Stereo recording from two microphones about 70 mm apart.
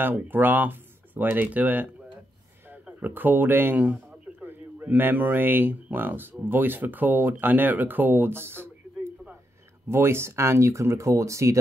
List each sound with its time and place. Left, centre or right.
0.0 s speech: right
3.0 s speech: right